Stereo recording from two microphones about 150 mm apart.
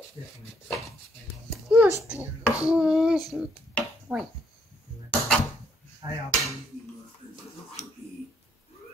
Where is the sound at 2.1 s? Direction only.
10° right (ahead or behind).